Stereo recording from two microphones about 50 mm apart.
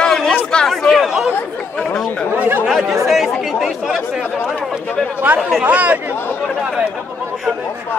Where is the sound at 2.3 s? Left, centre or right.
Right.